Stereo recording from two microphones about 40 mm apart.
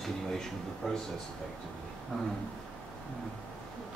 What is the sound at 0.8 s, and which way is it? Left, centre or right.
Speech, centre.